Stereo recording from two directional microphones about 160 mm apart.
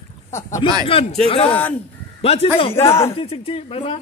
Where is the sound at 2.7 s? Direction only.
15° left (ahead or behind).